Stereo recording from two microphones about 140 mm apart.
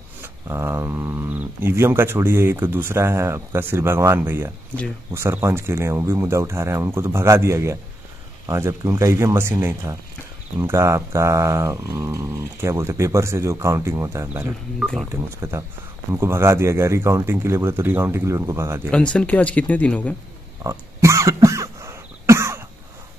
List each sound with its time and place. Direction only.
0.2 s speech: 20° right (ahead or behind)
19.1 s speech: 10° left (ahead or behind)
20.6 s cough: 20° right (ahead or behind)